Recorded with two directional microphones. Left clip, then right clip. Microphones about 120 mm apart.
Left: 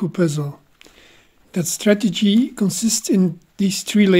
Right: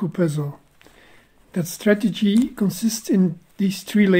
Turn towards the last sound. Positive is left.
turn(degrees=30)  # may be behind; listen again after turning